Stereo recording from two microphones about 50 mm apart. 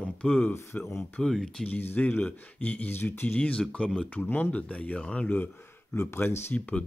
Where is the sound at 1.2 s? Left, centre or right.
Centre.